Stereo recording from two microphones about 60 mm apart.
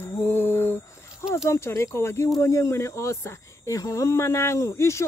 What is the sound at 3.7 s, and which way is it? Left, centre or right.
Speech, left.